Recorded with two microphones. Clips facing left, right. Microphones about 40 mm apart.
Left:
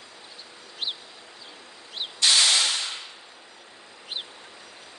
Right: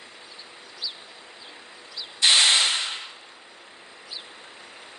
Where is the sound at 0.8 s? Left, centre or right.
Left.